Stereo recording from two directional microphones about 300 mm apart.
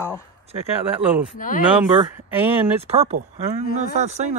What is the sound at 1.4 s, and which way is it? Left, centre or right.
Speech, left.